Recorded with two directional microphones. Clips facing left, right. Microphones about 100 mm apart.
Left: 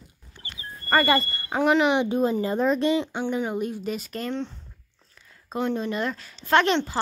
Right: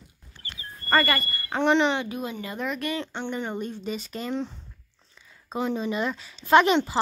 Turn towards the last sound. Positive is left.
turn(degrees=-5)  # may be behind; listen again after turning